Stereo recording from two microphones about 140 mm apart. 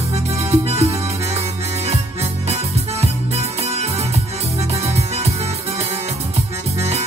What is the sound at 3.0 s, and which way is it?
Music, 50° right (ahead or behind).